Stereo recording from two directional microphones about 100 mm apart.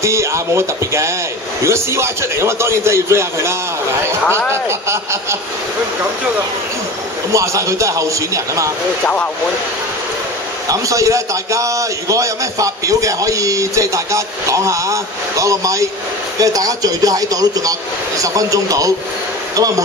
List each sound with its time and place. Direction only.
0.0 s a man's voice: 30° right (ahead or behind)
4.6 s a man's voice: 30° right (ahead or behind)
7.3 s a man's voice: 30° right (ahead or behind)
9.0 s speech: 15° left (ahead or behind)
10.7 s a man's voice: 35° right (ahead or behind)